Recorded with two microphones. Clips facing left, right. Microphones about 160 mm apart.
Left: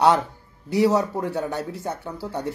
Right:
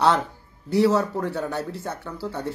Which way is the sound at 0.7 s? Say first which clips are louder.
Even; 15° left (ahead or behind).